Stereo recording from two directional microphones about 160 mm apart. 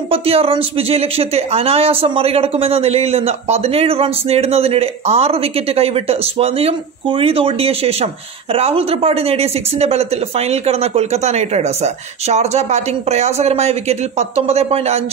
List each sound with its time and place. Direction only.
0.1 s speech: 35° right (ahead or behind)